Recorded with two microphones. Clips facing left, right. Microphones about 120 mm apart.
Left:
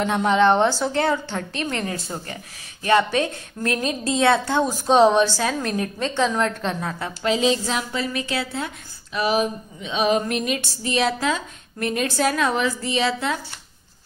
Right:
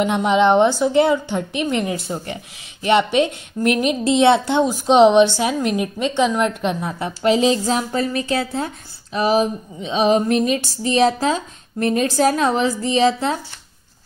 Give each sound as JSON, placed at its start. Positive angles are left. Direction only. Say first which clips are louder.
{"t": 0.0, "sound": "a woman's voice", "louder": "right 2 dB", "side_deg": -15}
{"t": 7.2, "sound": "a woman's voice", "louder": "right 5 dB", "side_deg": -35}